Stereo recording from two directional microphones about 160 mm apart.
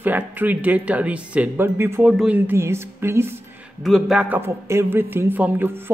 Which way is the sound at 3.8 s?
Centre (ahead or behind).